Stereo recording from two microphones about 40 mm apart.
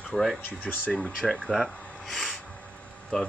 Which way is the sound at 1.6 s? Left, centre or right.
Centre.